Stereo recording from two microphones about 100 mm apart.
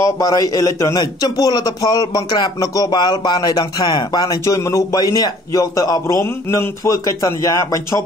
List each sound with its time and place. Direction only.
0.0 s a man's voice: 35° left (ahead or behind)